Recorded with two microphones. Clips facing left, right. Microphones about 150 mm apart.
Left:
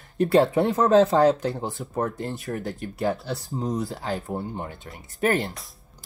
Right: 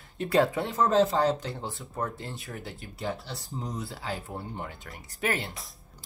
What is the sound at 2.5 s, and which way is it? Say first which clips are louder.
Speech: left 10 dB; 45° left (ahead or behind).